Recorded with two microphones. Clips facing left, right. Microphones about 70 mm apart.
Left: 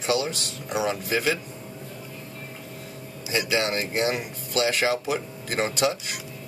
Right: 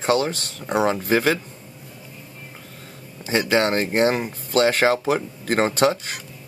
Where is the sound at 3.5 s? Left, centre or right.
Right.